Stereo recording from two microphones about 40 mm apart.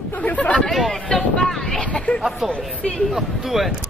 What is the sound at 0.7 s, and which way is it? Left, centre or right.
Speech, centre.